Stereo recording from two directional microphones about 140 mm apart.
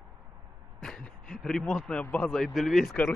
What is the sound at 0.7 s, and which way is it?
A man's voice, 5° left (ahead or behind).